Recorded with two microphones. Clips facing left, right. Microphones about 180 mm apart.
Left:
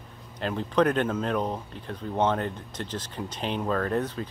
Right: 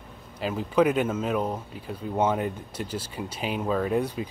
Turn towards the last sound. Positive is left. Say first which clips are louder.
# right 2 dB
turn(degrees=-10)  # may be behind; listen again after turning